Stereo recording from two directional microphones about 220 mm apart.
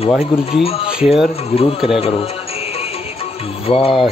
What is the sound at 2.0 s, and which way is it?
Speech, 25° left (ahead or behind).